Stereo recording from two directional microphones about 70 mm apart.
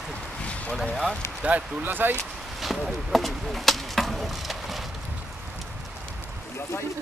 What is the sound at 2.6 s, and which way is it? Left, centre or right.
Chop, centre.